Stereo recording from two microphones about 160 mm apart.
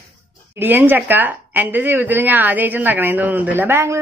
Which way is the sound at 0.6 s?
10° right (ahead or behind).